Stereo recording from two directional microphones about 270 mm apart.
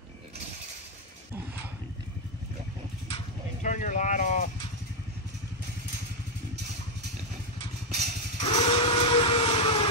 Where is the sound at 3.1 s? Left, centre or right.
Left.